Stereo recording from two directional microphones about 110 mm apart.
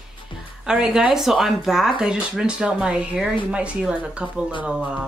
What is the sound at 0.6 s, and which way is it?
Speech, 5° right (ahead or behind).